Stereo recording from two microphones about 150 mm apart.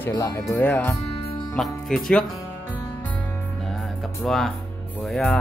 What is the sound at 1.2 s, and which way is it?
Music, 35° left (ahead or behind).